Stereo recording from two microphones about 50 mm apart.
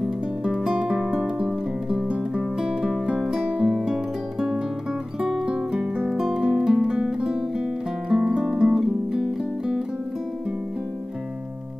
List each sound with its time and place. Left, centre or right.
0.0 s music: centre
2.6 s music: centre
3.5 s guitar: centre
5.2 s music: centre
6.0 s music: centre